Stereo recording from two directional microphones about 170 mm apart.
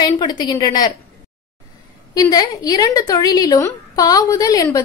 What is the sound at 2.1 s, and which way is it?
A woman's voice, 20° left (ahead or behind).